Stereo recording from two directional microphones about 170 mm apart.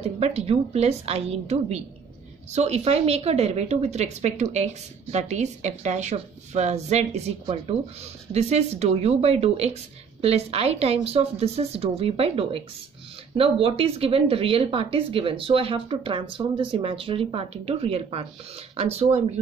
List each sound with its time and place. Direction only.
0.2 s a woman's voice: 40° right (ahead or behind)